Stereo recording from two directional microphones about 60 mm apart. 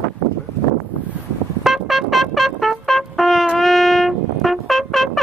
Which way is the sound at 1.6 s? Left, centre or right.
Centre.